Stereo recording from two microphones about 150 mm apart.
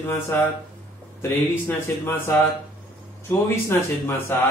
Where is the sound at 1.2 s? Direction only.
15° left (ahead or behind).